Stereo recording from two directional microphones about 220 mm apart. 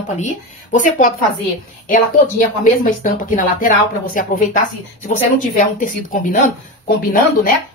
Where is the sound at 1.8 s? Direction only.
40° left (ahead or behind).